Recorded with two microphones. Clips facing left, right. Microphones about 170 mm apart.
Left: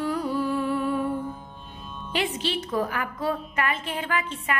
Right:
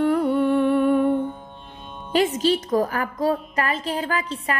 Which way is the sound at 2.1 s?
40° right (ahead or behind).